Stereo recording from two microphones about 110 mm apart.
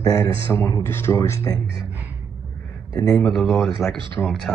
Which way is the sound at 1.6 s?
50° right (ahead or behind).